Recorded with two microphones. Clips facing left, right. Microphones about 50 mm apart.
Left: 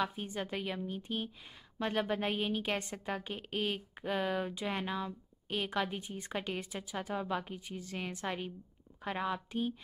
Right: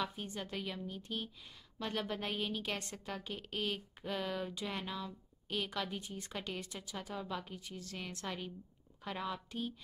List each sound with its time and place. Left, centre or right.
0.0 s a woman's voice: centre